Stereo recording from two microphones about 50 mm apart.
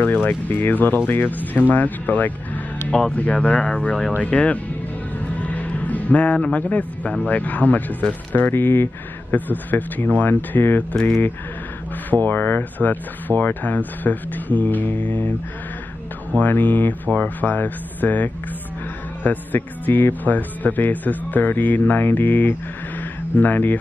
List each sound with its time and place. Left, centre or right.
0.3 s speech: left
2.9 s speech: centre
3.3 s a man's voice: left
12.1 s speech: left
16.3 s speech: left